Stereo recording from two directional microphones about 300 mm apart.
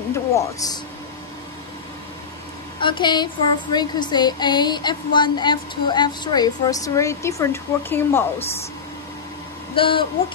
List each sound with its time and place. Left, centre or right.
0.1 s speech: centre
2.8 s speech: centre
9.8 s speech: centre